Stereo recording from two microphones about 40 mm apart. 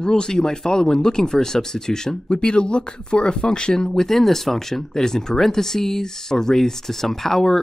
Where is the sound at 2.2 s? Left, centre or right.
Left.